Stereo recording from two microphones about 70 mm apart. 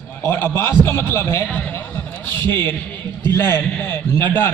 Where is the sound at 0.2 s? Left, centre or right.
Left.